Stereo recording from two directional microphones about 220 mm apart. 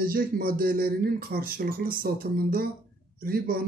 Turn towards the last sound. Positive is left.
turn(degrees=-40)  # may be behind; listen again after turning